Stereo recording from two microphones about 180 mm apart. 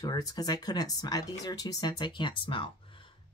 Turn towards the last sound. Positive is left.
turn(degrees=30)  # may be behind; listen again after turning